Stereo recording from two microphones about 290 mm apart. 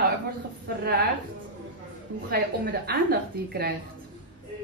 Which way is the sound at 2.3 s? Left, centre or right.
Right.